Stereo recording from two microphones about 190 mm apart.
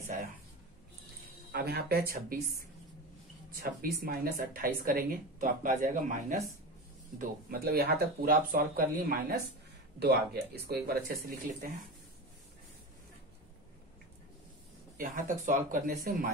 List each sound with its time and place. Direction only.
1.5 s speech: 55° right (ahead or behind)
7.2 s speech: 55° right (ahead or behind)
15.0 s speech: 45° right (ahead or behind)